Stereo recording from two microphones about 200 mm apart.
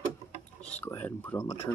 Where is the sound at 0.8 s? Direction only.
10° left (ahead or behind).